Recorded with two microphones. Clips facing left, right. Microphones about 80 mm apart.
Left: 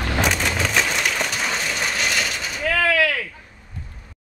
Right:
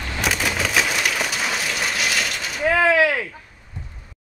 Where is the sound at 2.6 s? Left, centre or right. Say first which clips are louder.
Right 3 dB; right.